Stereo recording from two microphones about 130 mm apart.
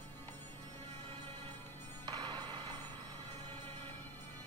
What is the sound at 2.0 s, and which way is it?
Music, 35° right (ahead or behind).